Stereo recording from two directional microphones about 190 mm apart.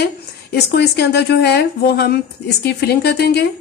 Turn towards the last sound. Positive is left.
turn(degrees=60)  # may be behind; listen again after turning